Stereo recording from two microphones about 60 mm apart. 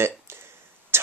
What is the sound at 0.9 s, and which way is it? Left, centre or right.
Tick, right.